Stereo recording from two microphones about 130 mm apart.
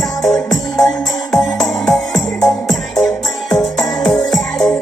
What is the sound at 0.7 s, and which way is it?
Music, 5° left (ahead or behind).